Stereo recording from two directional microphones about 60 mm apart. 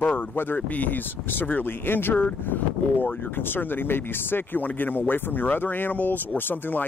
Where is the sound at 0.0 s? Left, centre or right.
Left.